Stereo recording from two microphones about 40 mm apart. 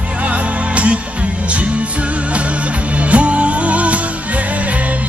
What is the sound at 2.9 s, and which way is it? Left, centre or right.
Music, right.